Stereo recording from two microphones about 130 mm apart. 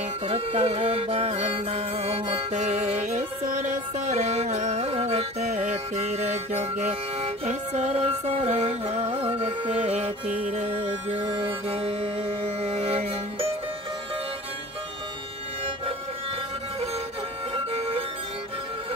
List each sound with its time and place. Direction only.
0.3 s music: 50° right (ahead or behind)
2.6 s music: 55° right (ahead or behind)
3.1 s music: 80° right
4.1 s music: 55° right (ahead or behind)
11.1 s music: 40° right (ahead or behind)
17.7 s music: 45° right (ahead or behind)